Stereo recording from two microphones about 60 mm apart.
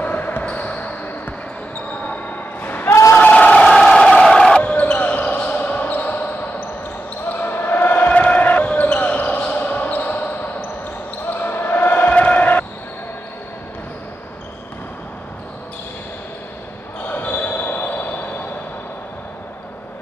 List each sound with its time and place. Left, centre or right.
0.0 s basketball bounce: left
2.0 s a sound: left
3.2 s crowd: left
3.6 s a sound: centre
4.6 s basketball bounce: left
17.1 s basketball bounce: left